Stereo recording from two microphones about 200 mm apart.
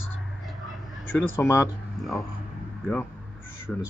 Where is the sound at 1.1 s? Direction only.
15° left (ahead or behind).